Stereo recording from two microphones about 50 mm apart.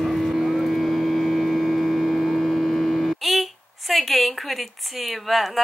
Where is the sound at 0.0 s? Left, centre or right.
Centre.